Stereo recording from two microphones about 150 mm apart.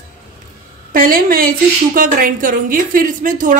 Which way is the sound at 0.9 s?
70° right (ahead or behind).